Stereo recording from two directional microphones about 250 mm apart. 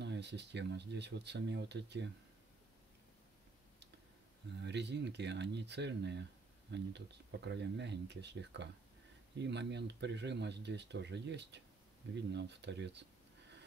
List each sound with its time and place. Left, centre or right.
0.0 s speech: right
4.6 s speech: right